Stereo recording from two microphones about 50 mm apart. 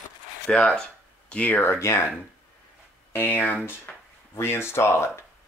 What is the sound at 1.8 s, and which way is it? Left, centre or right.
Speech, left.